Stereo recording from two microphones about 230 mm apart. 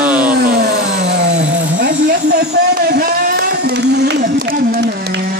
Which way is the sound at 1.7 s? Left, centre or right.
Right.